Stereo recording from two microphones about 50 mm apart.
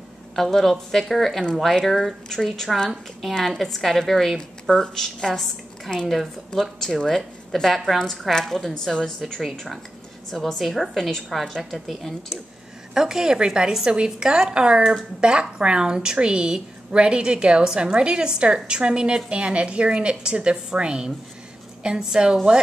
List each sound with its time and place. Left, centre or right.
0.4 s a woman's voice: centre
10.3 s a woman's voice: centre
12.9 s a woman's voice: centre